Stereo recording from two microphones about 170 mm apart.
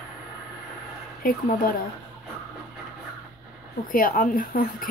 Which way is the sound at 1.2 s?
55° left (ahead or behind).